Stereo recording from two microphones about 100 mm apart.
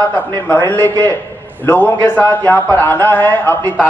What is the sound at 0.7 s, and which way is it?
A man's voice, 20° left (ahead or behind).